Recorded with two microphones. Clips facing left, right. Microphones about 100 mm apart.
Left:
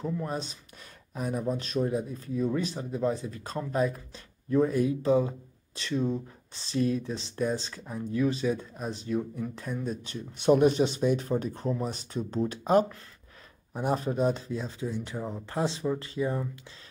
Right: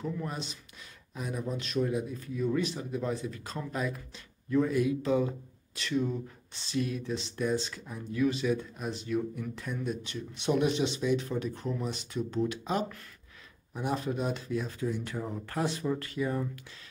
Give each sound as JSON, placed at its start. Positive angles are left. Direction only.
{"t": 0.0, "sound": "speech", "side_deg": 35}